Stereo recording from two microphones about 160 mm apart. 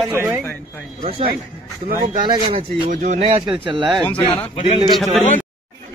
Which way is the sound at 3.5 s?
30° right (ahead or behind).